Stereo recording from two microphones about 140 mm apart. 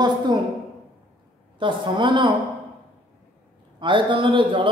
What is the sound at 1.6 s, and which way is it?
Speech, 35° right (ahead or behind).